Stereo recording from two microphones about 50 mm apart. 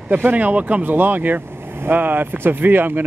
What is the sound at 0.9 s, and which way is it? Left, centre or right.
Speech, right.